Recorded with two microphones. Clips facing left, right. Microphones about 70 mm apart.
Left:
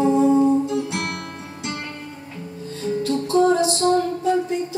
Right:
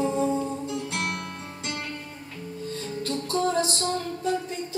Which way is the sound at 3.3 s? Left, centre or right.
Left.